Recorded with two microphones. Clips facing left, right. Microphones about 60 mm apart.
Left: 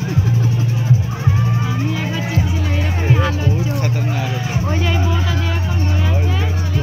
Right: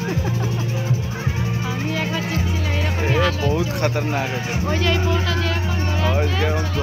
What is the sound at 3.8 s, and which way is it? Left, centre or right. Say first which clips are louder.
Speech: even; right.